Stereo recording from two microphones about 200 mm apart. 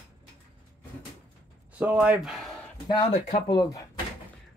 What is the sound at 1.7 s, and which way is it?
Speech, 10° right (ahead or behind).